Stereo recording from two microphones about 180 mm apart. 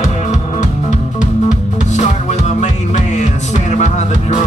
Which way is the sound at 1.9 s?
40° left (ahead or behind).